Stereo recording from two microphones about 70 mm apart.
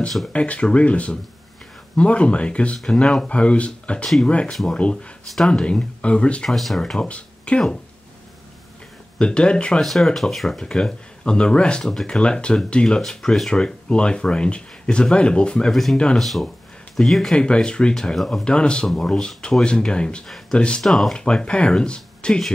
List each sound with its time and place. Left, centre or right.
0.3 s speech: centre
6.5 s speech: centre
7.1 s speech: centre
9.2 s speech: centre
15.7 s speech: centre
20.8 s speech: centre